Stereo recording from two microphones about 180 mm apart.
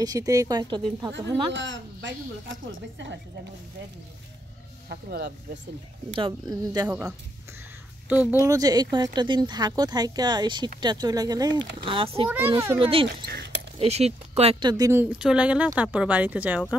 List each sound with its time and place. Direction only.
0.0 s speech: 20° right (ahead or behind)
1.5 s a woman's voice: 90° right
4.8 s speech: 65° right (ahead or behind)
6.1 s speech: 25° right (ahead or behind)
8.1 s speech: 10° right (ahead or behind); by 13.1 s 30° right (ahead or behind)
13.2 s zipper: 65° right (ahead or behind)
13.7 s speech: 35° right (ahead or behind); by 16.6 s 10° right (ahead or behind)